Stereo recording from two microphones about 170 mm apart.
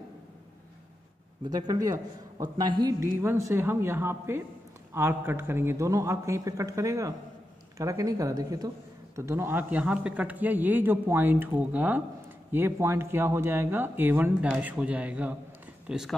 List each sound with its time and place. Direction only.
1.5 s a man's voice: 20° right (ahead or behind); by 16.2 s centre (ahead or behind)